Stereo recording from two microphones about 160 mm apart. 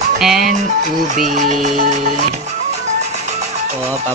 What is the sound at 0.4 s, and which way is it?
Music, 55° right (ahead or behind).